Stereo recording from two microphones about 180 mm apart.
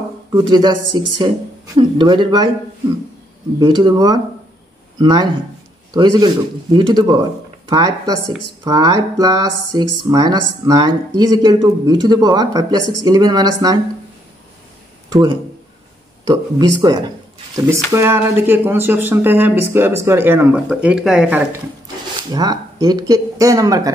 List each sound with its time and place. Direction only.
0.5 s speech: 25° right (ahead or behind)
3.5 s speech: 25° right (ahead or behind)
16.3 s speech: 20° right (ahead or behind)
22.3 s speech: 20° right (ahead or behind)